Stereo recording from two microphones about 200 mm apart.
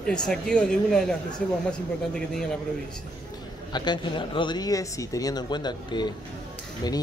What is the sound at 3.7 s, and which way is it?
Speech, 25° left (ahead or behind).